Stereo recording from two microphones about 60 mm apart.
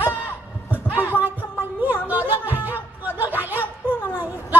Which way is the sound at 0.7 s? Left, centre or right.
Right.